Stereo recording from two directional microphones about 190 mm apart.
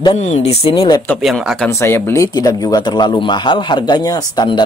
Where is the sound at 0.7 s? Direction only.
20° left (ahead or behind).